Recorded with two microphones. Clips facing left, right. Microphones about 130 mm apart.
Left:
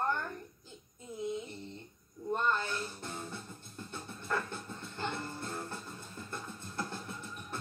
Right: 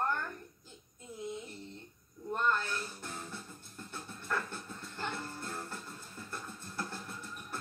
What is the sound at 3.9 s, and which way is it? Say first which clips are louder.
Music: left 1 dB; 15° left (ahead or behind).